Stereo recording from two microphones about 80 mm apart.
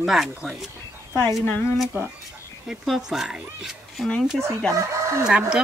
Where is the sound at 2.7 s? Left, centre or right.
Centre.